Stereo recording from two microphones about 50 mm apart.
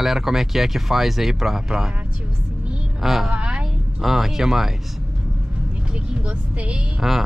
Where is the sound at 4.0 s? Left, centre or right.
Centre.